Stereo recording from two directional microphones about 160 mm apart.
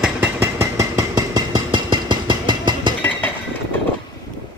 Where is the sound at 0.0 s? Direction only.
10° right (ahead or behind); by 2.9 s 30° right (ahead or behind).